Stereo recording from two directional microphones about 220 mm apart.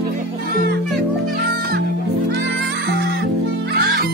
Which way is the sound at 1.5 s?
45° right (ahead or behind).